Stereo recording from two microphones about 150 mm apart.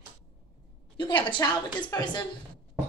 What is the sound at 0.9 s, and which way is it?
A woman's voice, 30° left (ahead or behind).